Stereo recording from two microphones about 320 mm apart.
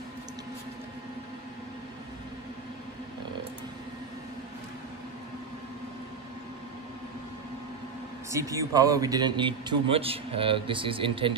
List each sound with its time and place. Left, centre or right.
8.3 s a man's voice: centre